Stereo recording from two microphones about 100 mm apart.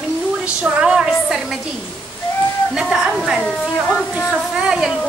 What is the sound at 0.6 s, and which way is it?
Speech, 10° right (ahead or behind).